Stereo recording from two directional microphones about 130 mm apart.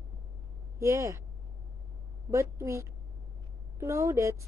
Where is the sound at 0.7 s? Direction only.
25° right (ahead or behind).